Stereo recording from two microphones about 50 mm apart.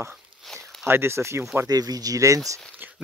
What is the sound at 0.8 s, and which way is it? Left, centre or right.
Speech, right.